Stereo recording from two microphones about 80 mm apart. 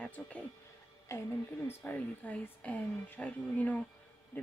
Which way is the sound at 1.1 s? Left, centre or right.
Left.